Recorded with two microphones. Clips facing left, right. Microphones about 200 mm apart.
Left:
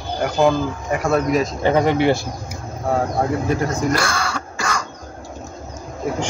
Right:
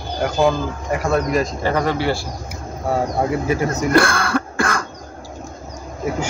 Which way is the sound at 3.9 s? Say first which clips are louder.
Right 6 dB; 55° right (ahead or behind).